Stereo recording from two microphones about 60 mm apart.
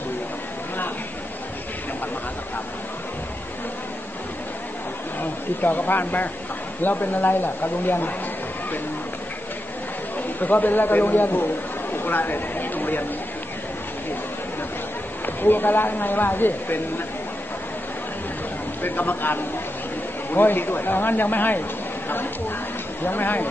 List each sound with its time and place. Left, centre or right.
5.2 s speech: left
10.1 s a man's voice: left
15.2 s speech: left
18.8 s speech: left
23.0 s speech: left